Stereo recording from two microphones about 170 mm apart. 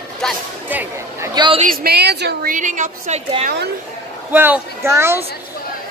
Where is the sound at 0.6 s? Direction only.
10° right (ahead or behind).